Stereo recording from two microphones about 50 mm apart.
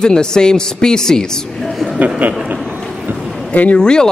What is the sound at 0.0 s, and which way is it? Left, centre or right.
A woman's voice, centre.